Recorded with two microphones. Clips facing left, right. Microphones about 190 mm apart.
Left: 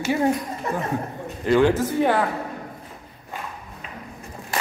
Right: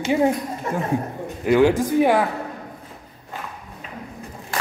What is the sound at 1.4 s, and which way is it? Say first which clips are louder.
Speech: right 2 dB; 10° right (ahead or behind).